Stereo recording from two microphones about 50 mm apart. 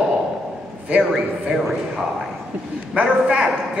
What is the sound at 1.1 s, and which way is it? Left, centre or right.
Speech, centre.